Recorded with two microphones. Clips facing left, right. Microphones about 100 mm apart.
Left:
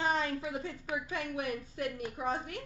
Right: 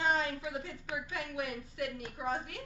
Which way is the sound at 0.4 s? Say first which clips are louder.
Left 2 dB; 30° left (ahead or behind).